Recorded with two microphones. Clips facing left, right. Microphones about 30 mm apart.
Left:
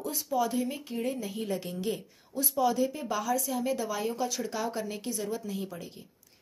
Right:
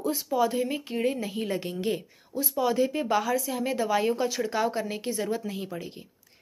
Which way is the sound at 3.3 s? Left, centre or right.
Right.